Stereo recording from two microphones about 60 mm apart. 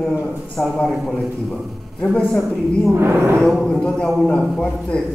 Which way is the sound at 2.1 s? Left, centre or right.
Centre.